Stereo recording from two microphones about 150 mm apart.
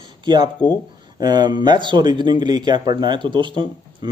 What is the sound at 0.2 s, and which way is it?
A man's voice, 30° right (ahead or behind).